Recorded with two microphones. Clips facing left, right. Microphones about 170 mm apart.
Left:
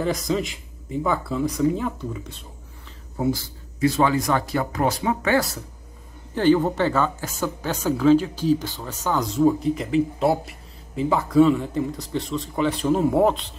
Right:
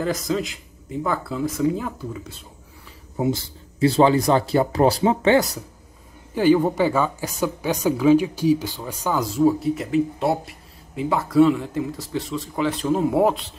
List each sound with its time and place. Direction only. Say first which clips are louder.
0.0 s speech: even; centre (ahead or behind)
3.2 s speech: right 1 dB; 25° right (ahead or behind)
6.3 s speech: right 1 dB; 10° right (ahead or behind)